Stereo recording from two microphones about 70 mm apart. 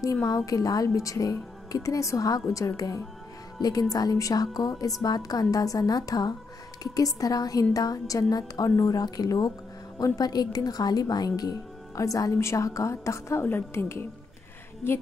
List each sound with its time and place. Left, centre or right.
0.0 s a woman's voice: left
3.6 s speech: left
13.4 s a woman's voice: left